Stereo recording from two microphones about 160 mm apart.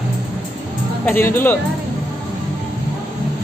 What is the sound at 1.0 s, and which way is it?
Speech, 15° left (ahead or behind).